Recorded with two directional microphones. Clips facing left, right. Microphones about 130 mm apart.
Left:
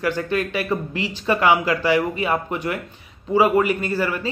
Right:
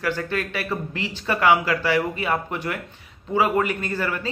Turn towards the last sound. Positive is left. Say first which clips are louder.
# left 4 dB
turn(degrees=10)  # may be behind; listen again after turning